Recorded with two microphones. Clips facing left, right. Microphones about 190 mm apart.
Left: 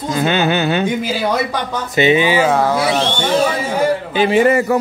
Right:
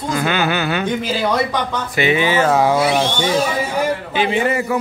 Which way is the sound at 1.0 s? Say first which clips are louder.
Left 1 dB; 10° left (ahead or behind).